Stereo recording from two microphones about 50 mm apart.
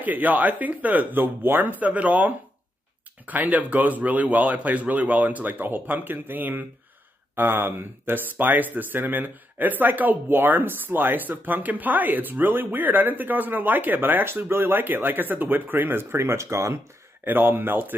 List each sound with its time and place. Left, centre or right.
0.0 s speech: right
1.7 s speech: right
17.2 s speech: right